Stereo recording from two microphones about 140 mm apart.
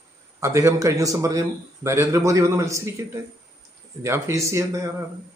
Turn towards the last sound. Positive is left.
turn(degrees=-20)  # may be behind; listen again after turning